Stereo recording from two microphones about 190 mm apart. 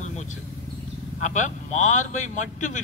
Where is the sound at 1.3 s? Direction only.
40° left (ahead or behind).